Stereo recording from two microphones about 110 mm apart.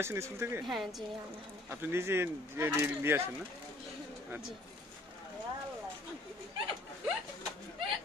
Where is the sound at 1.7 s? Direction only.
20° right (ahead or behind).